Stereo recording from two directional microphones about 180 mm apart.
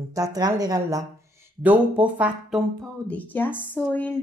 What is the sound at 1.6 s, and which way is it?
Speech, 10° right (ahead or behind).